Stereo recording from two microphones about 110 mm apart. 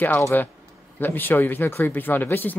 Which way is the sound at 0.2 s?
20° left (ahead or behind).